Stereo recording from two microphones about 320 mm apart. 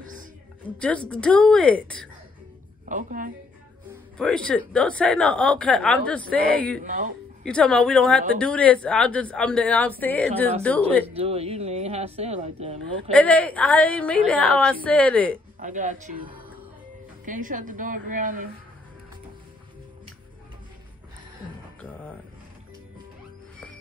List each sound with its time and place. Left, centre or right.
0.0 s music: right
0.7 s speech: centre
2.9 s speech: right
4.2 s speech: centre
6.8 s speech: right
7.4 s speech: centre
11.1 s speech: centre
13.1 s speech: centre
15.6 s speech: right